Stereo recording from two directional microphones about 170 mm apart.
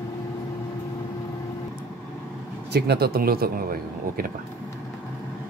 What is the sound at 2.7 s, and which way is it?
Speech, 70° right (ahead or behind).